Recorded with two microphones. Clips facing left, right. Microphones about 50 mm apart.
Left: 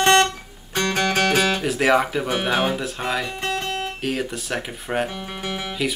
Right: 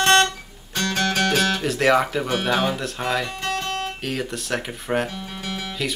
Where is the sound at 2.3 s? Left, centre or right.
Centre.